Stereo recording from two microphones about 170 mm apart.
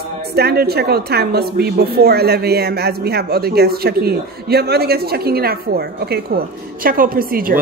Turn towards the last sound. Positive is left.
turn(degrees=-55)  # may be behind; listen again after turning